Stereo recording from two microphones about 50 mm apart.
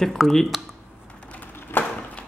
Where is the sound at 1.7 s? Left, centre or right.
Left.